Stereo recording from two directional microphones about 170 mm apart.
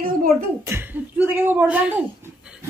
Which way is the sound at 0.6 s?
10° right (ahead or behind).